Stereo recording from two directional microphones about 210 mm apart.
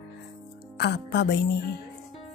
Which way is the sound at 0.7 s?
50° left (ahead or behind).